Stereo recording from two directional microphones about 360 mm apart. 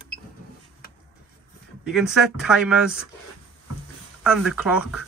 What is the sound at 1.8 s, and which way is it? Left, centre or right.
Speech, centre.